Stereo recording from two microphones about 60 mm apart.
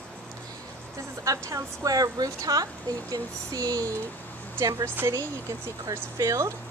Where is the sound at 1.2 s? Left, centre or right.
Right.